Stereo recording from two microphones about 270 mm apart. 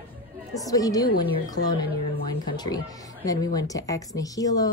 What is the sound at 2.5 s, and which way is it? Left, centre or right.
Speech, centre.